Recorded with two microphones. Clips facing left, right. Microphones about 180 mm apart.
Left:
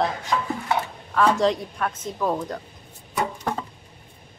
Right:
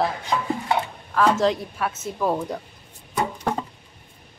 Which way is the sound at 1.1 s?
Centre (ahead or behind).